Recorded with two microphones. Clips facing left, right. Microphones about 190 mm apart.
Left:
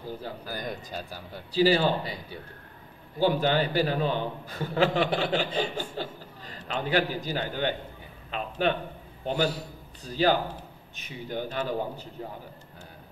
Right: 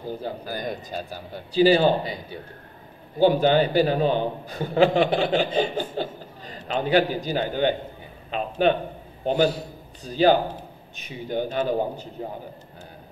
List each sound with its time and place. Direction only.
0.0 s a man's voice: 20° right (ahead or behind)
3.2 s a man's voice: 20° right (ahead or behind)